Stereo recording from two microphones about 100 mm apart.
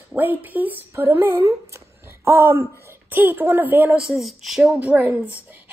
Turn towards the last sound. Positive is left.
turn(degrees=-15)  # may be behind; listen again after turning